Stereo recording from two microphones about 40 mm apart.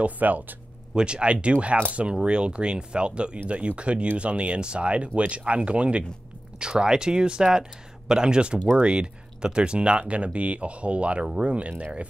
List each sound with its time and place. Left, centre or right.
0.0 s speech: right
0.9 s speech: right